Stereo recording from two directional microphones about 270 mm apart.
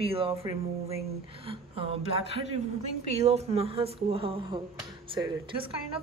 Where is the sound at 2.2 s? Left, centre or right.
Left.